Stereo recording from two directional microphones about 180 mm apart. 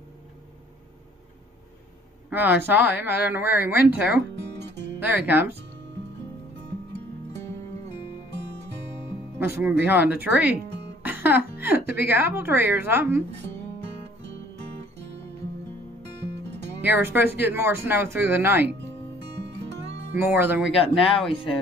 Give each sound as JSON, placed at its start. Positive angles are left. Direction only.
{"t": 2.2, "sound": "speech", "side_deg": -10}
{"t": 9.4, "sound": "speech", "side_deg": -10}
{"t": 16.8, "sound": "speech", "side_deg": -10}
{"t": 18.7, "sound": "music", "side_deg": -75}
{"t": 20.2, "sound": "speech", "side_deg": -10}